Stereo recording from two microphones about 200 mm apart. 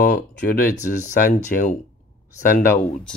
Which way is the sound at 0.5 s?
45° left (ahead or behind).